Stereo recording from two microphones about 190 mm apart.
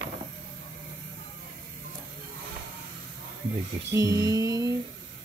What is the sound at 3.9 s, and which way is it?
Music, 15° right (ahead or behind).